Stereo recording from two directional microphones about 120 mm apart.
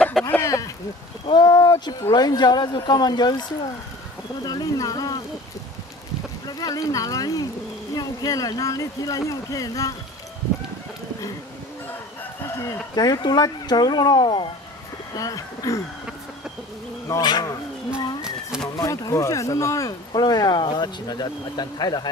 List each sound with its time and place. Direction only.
0.3 s speech: 25° left (ahead or behind)
1.2 s speech: 40° left (ahead or behind)
6.4 s speech: 30° left (ahead or behind)
12.5 s speech: 30° left (ahead or behind)
15.1 s speech: 30° left (ahead or behind)
17.1 s speech: 35° left (ahead or behind)
18.8 s speech: 30° left (ahead or behind)